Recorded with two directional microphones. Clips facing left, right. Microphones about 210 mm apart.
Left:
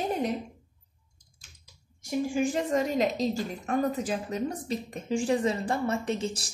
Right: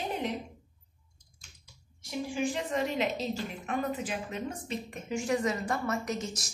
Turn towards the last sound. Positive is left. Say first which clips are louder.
# left 4 dB
turn(degrees=30)  # may be behind; listen again after turning